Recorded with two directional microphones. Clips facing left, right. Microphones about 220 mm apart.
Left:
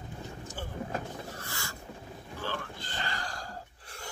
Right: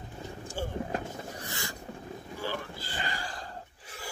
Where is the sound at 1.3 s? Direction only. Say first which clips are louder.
Right 3 dB; 15° right (ahead or behind).